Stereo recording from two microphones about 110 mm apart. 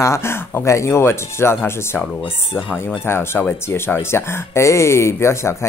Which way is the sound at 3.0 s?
20° left (ahead or behind).